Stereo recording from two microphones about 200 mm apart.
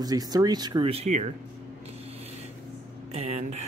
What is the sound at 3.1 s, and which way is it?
Speech, 35° right (ahead or behind).